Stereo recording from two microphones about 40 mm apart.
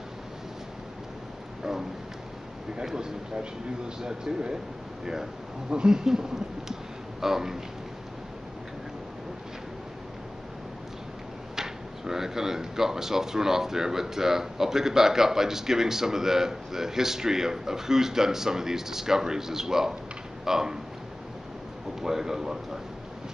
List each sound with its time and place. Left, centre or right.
2.7 s speech: centre
5.7 s speech: centre
6.7 s a sound: centre
11.5 s speech: centre
22.0 s speech: centre